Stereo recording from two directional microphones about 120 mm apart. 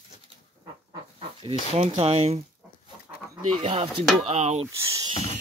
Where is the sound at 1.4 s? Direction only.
45° right (ahead or behind).